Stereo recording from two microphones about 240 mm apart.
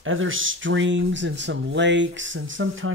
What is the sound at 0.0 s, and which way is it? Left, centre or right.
Speech, right.